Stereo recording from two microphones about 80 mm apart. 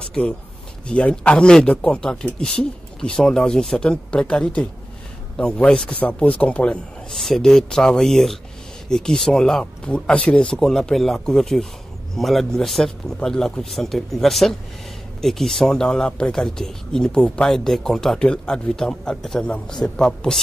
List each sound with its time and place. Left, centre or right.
0.0 s a sound: centre
0.8 s speech: centre
7.1 s a man's voice: centre